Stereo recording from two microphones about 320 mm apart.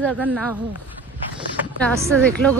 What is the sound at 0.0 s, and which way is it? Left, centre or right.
Speech, centre.